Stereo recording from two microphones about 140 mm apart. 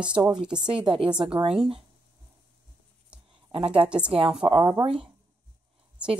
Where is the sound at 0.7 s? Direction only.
40° right (ahead or behind).